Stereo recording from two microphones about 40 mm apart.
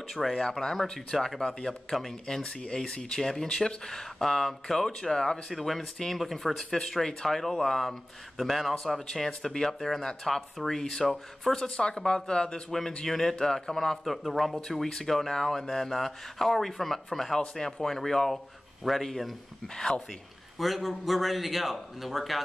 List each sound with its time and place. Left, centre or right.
0.4 s speech: centre
5.5 s a man's voice: centre
8.7 s speech: centre
11.5 s a man's voice: centre
19.7 s speech: centre
20.5 s a man's voice: centre